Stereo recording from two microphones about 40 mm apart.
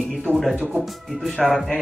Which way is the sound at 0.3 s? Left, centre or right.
Right.